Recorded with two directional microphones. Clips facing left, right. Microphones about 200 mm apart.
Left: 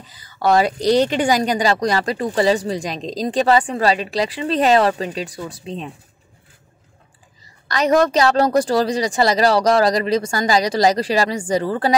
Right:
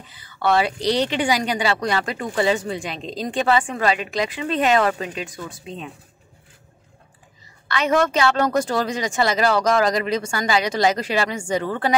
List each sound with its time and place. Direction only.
0.1 s a woman's voice: 40° left (ahead or behind)
7.6 s a woman's voice: 40° left (ahead or behind)